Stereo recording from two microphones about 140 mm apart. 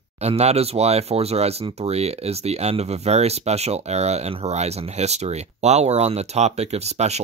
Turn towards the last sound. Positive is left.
turn(degrees=-50)  # may be behind; listen again after turning